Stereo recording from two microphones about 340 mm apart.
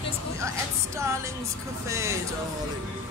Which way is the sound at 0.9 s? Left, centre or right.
Centre.